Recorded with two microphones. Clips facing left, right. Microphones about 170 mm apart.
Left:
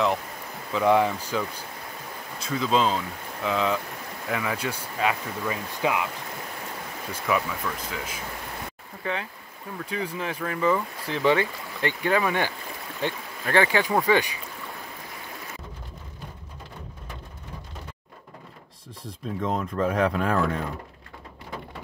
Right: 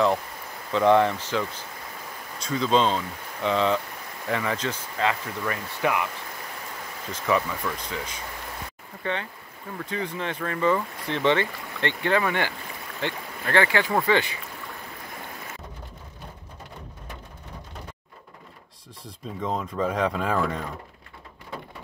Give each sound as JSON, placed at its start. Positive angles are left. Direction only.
{"t": 0.7, "sound": "speech", "side_deg": 5}
{"t": 7.1, "sound": "speech", "side_deg": 5}
{"t": 19.4, "sound": "speech", "side_deg": 0}